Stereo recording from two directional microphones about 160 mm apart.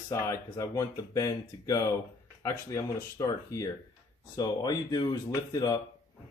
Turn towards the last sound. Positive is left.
turn(degrees=25)  # may be behind; listen again after turning